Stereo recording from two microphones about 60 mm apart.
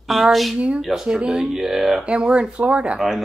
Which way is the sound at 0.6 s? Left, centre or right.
Centre.